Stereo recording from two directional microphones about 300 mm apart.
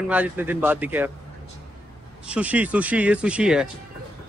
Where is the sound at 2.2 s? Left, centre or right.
Centre.